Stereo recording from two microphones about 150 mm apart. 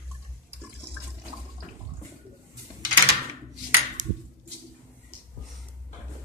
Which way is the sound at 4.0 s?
55° right (ahead or behind).